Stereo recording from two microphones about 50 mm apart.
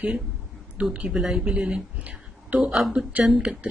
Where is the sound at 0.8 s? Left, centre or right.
Right.